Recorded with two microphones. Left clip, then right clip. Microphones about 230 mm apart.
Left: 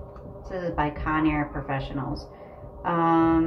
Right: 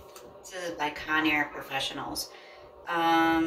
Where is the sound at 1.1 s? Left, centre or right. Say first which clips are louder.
Right 2 dB; right.